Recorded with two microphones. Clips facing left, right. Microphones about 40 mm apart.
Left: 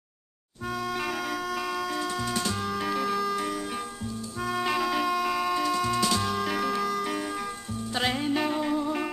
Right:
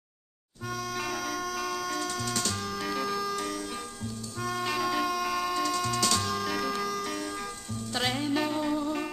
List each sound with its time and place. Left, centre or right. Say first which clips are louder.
0.7 s music: left 3 dB; centre